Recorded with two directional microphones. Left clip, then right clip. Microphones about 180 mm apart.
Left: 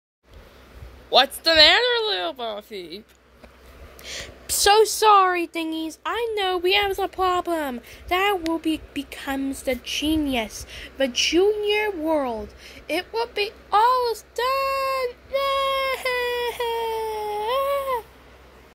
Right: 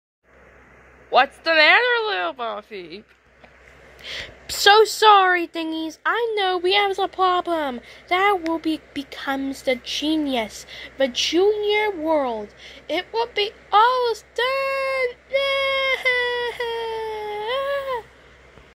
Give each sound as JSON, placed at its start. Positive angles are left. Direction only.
{"t": 1.1, "sound": "a woman's voice", "side_deg": 25}
{"t": 4.0, "sound": "a woman's voice", "side_deg": 15}